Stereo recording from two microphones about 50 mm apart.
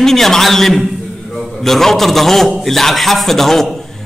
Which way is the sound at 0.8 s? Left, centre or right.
Centre.